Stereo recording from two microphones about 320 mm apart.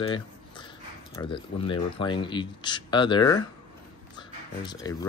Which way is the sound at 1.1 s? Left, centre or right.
Centre.